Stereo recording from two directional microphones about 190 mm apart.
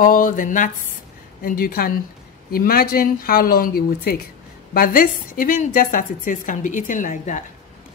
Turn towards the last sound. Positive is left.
turn(degrees=40)  # may be behind; listen again after turning